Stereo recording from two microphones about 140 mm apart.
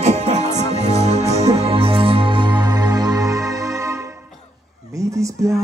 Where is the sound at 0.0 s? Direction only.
50° right (ahead or behind); by 4.1 s 20° right (ahead or behind).